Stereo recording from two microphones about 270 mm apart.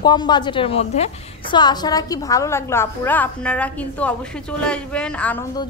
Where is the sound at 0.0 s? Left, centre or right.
Centre.